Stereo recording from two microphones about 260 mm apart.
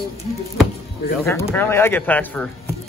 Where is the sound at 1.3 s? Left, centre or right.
Centre.